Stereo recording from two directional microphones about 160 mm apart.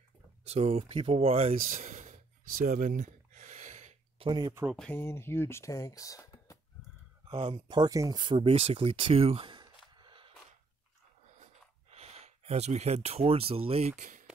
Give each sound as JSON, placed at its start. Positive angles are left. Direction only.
{"t": 0.5, "sound": "speech", "side_deg": -40}
{"t": 1.5, "sound": "a sound", "side_deg": -55}
{"t": 4.3, "sound": "speech", "side_deg": -30}
{"t": 4.7, "sound": "speech", "side_deg": 10}
{"t": 7.2, "sound": "speech", "side_deg": -30}
{"t": 11.9, "sound": "speech", "side_deg": -40}